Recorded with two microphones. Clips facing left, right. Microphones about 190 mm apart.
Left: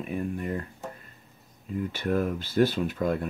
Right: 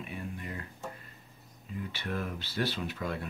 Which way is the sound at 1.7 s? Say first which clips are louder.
Left 9 dB; 50° left (ahead or behind).